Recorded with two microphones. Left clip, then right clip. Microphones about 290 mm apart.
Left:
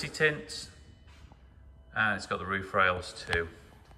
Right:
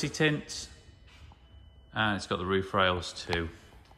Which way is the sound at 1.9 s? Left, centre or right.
Centre.